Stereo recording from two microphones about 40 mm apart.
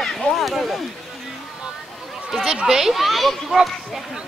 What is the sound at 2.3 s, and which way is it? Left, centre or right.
Speech, centre.